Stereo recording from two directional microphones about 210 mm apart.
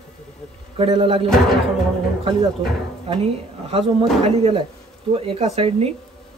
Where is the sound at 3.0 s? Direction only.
25° right (ahead or behind).